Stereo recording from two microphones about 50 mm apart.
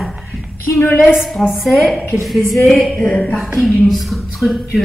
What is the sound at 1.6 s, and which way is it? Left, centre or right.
Speech, centre.